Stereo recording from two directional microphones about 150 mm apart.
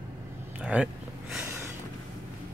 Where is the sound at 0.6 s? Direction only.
10° right (ahead or behind).